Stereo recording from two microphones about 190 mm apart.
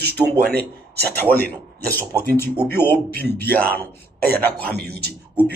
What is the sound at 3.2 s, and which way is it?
Speech, 55° right (ahead or behind).